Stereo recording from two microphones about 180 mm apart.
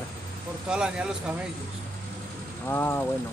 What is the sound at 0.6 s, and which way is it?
Speech, 5° right (ahead or behind).